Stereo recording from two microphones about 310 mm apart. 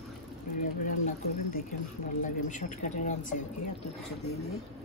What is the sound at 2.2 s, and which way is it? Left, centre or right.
Speech, left.